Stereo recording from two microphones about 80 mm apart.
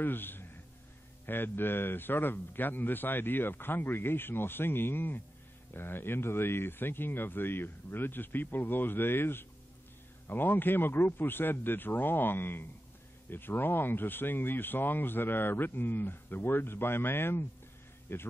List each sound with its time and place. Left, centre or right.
0.0 s a man's voice: left